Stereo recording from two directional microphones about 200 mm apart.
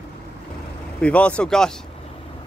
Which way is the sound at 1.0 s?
5° left (ahead or behind).